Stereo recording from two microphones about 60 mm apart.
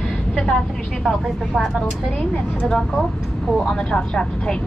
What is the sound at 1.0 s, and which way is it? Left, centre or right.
Speech, centre.